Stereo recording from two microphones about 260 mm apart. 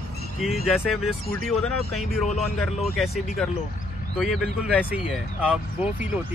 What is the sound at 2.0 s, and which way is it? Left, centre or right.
Speech, left.